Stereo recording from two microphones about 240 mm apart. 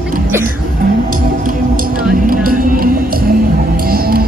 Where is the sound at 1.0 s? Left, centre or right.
Right.